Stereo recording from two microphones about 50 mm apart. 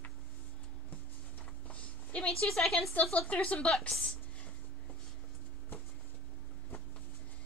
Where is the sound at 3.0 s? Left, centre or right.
Left.